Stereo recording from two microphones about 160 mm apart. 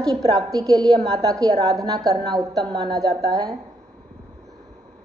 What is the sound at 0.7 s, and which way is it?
Speech, centre (ahead or behind).